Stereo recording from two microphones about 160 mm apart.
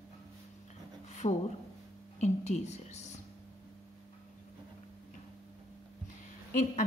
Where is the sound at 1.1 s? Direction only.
45° left (ahead or behind).